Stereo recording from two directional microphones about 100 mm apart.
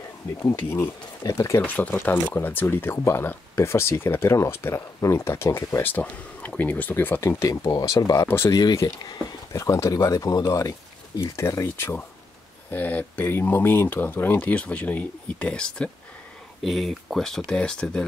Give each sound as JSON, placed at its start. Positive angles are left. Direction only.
{"t": 0.4, "sound": "speech", "side_deg": 30}
{"t": 1.6, "sound": "speech", "side_deg": 20}
{"t": 7.2, "sound": "speech", "side_deg": 30}